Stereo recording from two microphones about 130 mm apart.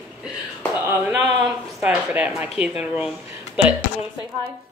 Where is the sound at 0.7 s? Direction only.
15° right (ahead or behind).